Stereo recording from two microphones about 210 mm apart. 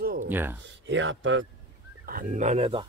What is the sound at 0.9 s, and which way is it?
Speech, 65° right (ahead or behind).